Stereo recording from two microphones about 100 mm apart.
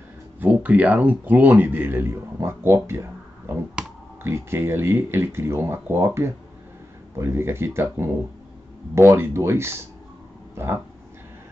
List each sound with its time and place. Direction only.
0.4 s speech: 15° right (ahead or behind)